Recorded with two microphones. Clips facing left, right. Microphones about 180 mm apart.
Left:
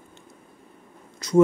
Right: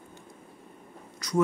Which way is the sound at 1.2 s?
25° left (ahead or behind).